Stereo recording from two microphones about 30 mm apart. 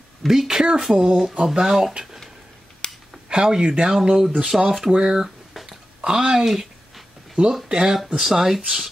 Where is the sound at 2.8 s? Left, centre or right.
Left.